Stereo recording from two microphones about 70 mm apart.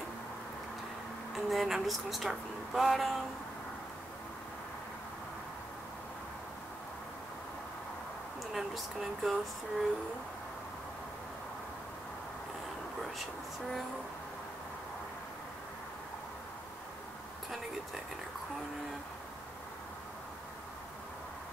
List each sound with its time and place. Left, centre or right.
1.3 s speech: centre
8.5 s speech: centre